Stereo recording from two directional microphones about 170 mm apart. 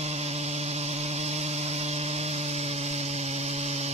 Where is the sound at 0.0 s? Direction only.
40° right (ahead or behind).